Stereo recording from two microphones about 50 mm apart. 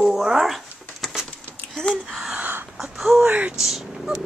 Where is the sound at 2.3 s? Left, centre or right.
Right.